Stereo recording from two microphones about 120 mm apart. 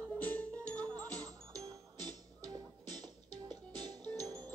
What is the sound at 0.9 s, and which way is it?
Music, 35° right (ahead or behind).